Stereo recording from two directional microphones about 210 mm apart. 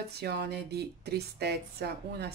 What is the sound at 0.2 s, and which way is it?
Speech, 50° right (ahead or behind).